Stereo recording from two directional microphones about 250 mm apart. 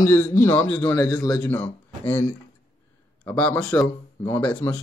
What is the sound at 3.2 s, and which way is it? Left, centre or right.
A man's voice, centre.